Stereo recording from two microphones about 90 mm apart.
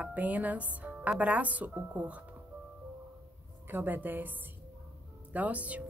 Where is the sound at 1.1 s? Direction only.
15° right (ahead or behind).